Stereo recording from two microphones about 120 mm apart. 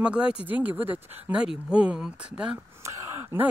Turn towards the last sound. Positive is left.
turn(degrees=-20)  # may be behind; listen again after turning